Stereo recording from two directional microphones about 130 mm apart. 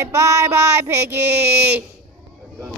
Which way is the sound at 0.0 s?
20° right (ahead or behind).